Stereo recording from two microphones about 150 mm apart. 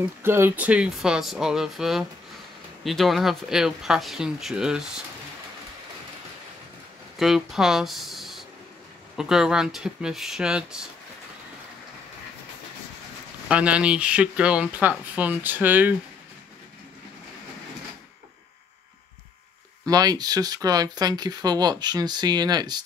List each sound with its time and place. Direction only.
0.2 s speech: 15° right (ahead or behind)
7.2 s speech: centre (ahead or behind)
13.5 s speech: 10° right (ahead or behind)
19.8 s speech: 25° right (ahead or behind)